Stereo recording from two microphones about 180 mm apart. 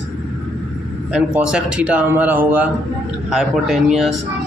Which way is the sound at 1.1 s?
5° right (ahead or behind).